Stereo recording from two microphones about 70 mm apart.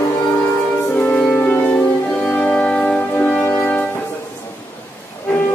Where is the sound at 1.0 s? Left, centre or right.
Left.